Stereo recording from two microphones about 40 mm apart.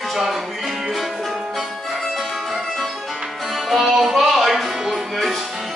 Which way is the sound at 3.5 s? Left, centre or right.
Centre.